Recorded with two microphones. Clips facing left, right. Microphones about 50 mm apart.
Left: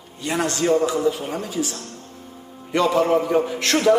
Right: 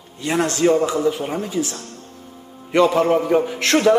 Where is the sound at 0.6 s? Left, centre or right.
Right.